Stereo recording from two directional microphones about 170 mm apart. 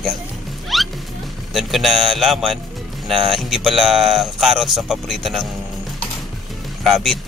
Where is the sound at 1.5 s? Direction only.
Centre (ahead or behind).